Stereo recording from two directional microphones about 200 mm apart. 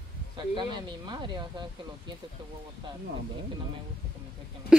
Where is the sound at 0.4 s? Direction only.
25° right (ahead or behind).